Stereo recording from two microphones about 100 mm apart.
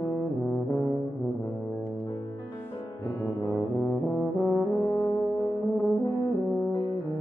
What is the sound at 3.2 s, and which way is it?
Brass instrument, centre (ahead or behind).